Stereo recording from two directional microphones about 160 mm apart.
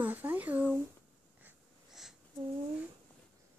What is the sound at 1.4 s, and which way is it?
Wheeze, centre (ahead or behind).